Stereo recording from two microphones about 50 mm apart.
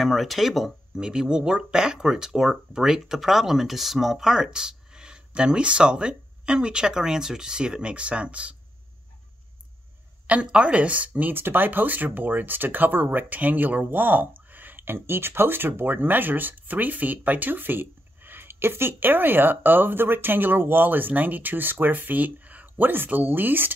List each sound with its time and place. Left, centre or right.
0.0 s speech: centre
1.0 s speech: centre
10.2 s speech: right
11.3 s speech: right